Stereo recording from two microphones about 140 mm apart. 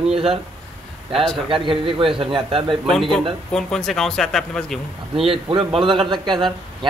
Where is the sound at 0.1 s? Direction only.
40° right (ahead or behind).